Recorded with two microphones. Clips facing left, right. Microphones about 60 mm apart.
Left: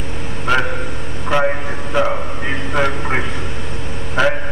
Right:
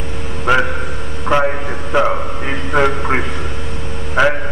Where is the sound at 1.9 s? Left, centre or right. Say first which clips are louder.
Right 3 dB; centre.